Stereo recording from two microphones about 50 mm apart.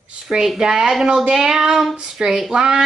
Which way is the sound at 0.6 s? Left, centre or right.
Centre.